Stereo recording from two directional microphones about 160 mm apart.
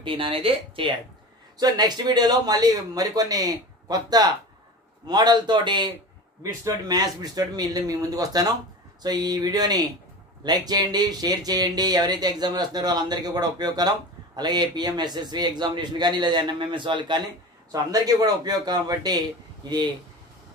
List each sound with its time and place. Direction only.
0.0 s speech: 30° right (ahead or behind)